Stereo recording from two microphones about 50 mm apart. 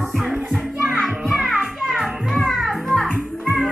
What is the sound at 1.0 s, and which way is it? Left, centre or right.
Music, centre.